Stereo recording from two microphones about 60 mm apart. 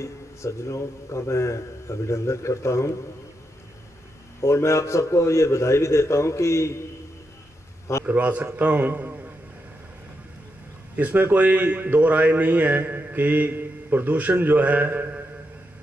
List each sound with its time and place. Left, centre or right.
0.0 s a man's voice: left
4.4 s a man's voice: left
8.0 s a man's voice: right
11.0 s a man's voice: right